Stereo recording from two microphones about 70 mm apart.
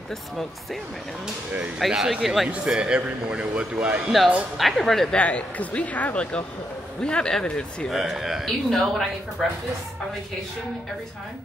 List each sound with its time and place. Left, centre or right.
1.9 s a man's voice: centre
4.6 s a man's voice: centre
5.1 s speech: centre
7.9 s a man's voice: centre